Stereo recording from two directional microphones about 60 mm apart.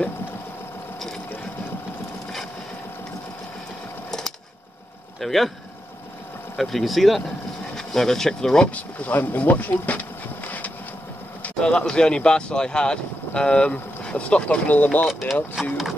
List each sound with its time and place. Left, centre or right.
5.2 s speech: centre
6.5 s speech: centre
8.7 s speech: left
11.6 s speech: centre
15.0 s speech: centre